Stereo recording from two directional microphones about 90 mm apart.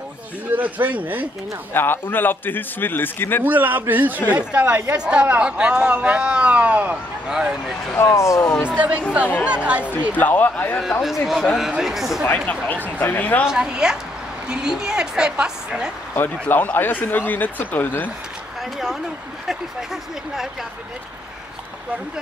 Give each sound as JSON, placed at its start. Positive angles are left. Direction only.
{"t": 0.6, "sound": "a man's voice", "side_deg": -20}
{"t": 1.7, "sound": "speech", "side_deg": 25}
{"t": 3.4, "sound": "a man's voice", "side_deg": -20}
{"t": 7.9, "sound": "speech", "side_deg": 30}
{"t": 8.6, "sound": "speech", "side_deg": -15}
{"t": 10.1, "sound": "speech", "side_deg": 20}
{"t": 10.8, "sound": "speech", "side_deg": 0}
{"t": 12.8, "sound": "speech", "side_deg": 20}
{"t": 13.5, "sound": "speech", "side_deg": -10}
{"t": 16.2, "sound": "speech", "side_deg": 20}